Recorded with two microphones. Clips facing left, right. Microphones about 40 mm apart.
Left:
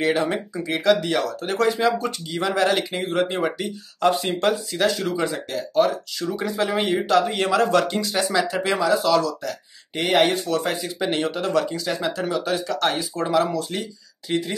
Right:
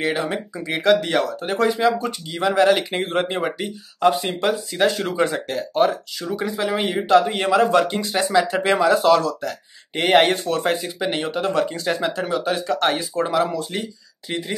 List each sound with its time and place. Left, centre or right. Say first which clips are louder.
0.0 s speech: left 1 dB; centre
0.7 s speech: right 2 dB; centre
2.9 s speech: right 1 dB; right
3.3 s speech: even; centre
4.7 s speech: right 3 dB; right
5.9 s speech: right 1 dB; centre
7.6 s speech: right 2 dB; centre
7.9 s speech: right 3 dB; right
11.0 s speech: even; centre
11.7 s speech: right 2 dB; right; by 14.4 s centre